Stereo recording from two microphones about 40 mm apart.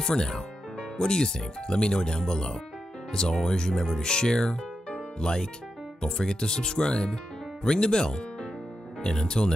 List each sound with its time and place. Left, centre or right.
0.0 s speech: centre
4.9 s music: left
5.9 s speech: centre